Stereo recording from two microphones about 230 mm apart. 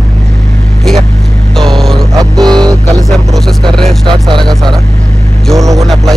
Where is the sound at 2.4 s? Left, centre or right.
Centre.